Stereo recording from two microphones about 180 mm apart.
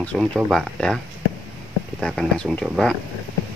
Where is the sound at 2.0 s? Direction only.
5° left (ahead or behind).